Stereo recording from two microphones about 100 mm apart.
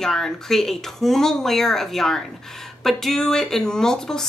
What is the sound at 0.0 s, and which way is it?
Speech, 5° left (ahead or behind).